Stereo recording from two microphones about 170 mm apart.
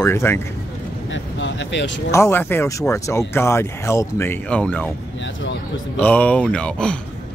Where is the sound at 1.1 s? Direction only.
90° left.